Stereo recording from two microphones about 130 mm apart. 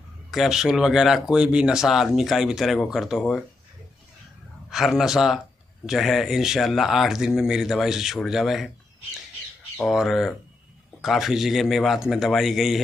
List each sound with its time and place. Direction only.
0.3 s speech: 5° right (ahead or behind)
4.6 s speech: centre (ahead or behind)
9.8 s speech: centre (ahead or behind)